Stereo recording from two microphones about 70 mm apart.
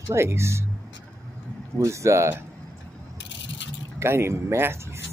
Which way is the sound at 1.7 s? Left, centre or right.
Right.